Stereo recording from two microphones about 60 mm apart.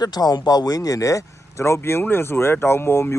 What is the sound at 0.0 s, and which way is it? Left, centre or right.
Speech, left.